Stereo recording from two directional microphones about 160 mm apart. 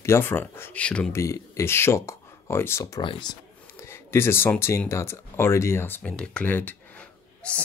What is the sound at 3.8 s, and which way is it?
Speech, 15° left (ahead or behind).